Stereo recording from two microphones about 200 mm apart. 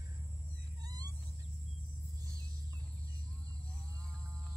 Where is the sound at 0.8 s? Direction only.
20° right (ahead or behind).